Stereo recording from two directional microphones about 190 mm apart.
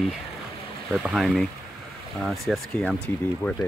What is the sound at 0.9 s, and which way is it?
Speech, centre (ahead or behind).